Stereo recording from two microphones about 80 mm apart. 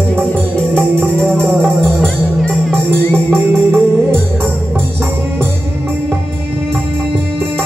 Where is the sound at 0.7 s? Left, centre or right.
Right.